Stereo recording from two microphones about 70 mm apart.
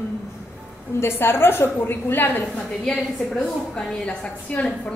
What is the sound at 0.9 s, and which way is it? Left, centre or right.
A woman's voice, left.